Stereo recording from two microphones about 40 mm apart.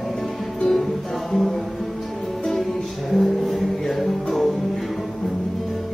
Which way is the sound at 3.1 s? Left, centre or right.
Centre.